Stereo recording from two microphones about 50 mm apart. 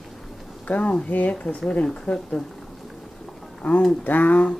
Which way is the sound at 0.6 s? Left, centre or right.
Left.